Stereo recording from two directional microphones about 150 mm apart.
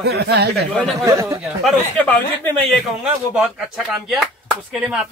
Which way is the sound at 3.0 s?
5° right (ahead or behind).